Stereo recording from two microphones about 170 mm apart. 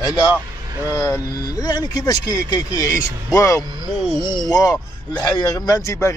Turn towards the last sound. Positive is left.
turn(degrees=20)  # may be behind; listen again after turning